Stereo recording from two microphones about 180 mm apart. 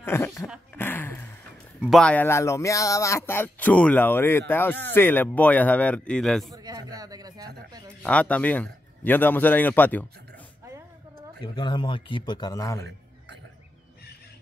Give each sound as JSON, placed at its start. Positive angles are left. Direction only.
{"t": 0.0, "sound": "dog", "side_deg": 15}
{"t": 0.7, "sound": "a sound", "side_deg": 10}
{"t": 1.8, "sound": "speech", "side_deg": 0}
{"t": 6.5, "sound": "speech", "side_deg": -20}
{"t": 8.0, "sound": "speech", "side_deg": 5}
{"t": 11.4, "sound": "a man's voice", "side_deg": 25}